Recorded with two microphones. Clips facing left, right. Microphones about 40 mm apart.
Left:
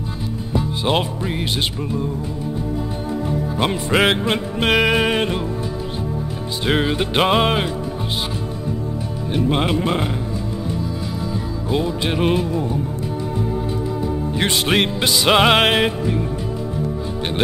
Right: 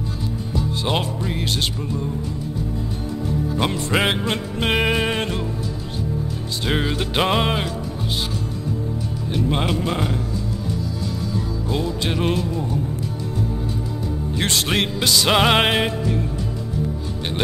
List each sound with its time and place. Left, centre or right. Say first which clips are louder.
0.6 s music: left 3 dB; centre
3.3 s music: left 1 dB; centre
6.6 s music: left 4 dB; centre
9.3 s speech: left 3 dB; centre
11.7 s music: left 4 dB; centre
14.3 s music: left 3 dB; centre